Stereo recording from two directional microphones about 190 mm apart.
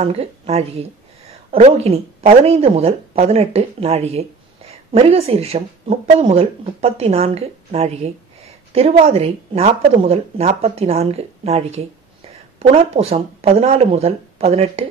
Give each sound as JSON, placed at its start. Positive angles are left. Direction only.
{"t": 0.0, "sound": "speech", "side_deg": -35}